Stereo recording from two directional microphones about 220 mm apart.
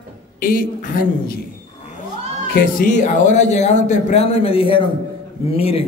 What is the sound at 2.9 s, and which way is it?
A man's voice, 35° left (ahead or behind).